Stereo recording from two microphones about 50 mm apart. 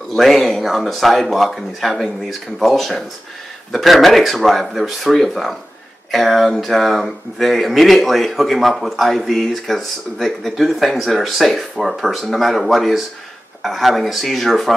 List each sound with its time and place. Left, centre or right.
0.1 s speech: centre